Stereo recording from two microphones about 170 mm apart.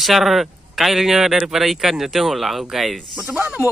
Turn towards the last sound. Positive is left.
turn(degrees=-10)  # may be behind; listen again after turning